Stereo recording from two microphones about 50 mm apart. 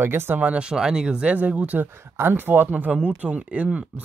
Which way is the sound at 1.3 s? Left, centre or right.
Right.